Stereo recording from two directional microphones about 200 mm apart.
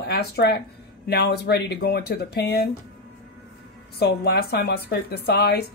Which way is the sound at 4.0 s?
50° left (ahead or behind).